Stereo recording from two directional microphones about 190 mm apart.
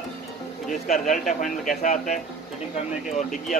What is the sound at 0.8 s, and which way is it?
Speech, 45° left (ahead or behind).